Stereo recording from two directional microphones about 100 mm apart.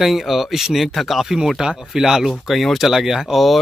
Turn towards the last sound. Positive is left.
turn(degrees=0)  # may be behind; listen again after turning